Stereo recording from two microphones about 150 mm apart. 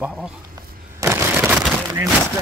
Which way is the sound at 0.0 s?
5° right (ahead or behind).